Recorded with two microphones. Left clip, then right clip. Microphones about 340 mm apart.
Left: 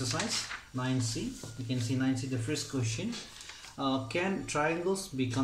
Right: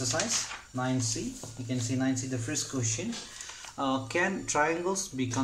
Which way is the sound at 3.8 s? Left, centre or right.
Right.